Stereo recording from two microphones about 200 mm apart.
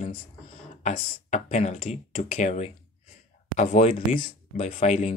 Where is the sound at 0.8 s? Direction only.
35° left (ahead or behind).